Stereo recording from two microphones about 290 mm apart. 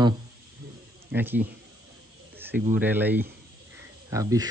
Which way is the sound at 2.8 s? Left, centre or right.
Centre.